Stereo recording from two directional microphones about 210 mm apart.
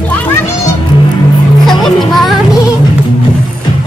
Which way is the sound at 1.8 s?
Centre (ahead or behind).